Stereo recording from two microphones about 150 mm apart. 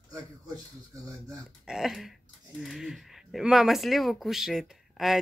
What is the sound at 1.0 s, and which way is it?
Speech, 20° right (ahead or behind).